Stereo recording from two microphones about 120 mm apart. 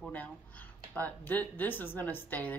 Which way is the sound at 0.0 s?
15° left (ahead or behind).